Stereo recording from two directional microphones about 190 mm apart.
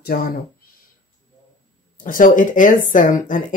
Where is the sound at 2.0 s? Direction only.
45° left (ahead or behind).